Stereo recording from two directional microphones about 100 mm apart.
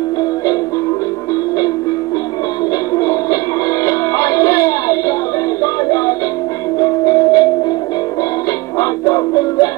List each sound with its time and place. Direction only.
2.9 s music: 35° left (ahead or behind)
8.7 s music: 35° left (ahead or behind)